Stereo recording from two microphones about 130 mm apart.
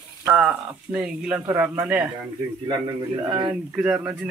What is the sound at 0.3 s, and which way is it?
Speech, 5° right (ahead or behind).